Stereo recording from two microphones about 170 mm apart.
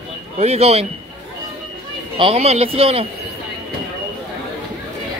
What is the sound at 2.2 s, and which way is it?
Speech, 35° right (ahead or behind).